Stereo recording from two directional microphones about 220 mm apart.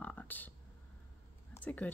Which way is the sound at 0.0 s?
5° left (ahead or behind).